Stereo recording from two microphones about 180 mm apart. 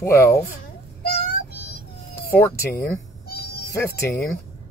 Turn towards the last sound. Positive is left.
turn(degrees=15)  # may be behind; listen again after turning